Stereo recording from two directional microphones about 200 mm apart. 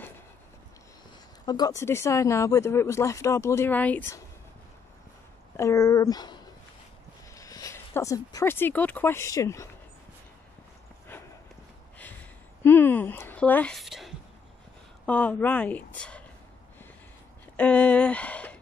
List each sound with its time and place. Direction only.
1.4 s speech: 20° left (ahead or behind)
5.6 s speech: 15° left (ahead or behind)
12.6 s a woman's voice: 10° left (ahead or behind)
17.6 s speech: 5° left (ahead or behind)